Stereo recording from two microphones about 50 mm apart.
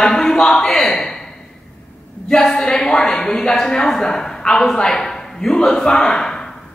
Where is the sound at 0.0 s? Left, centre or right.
Centre.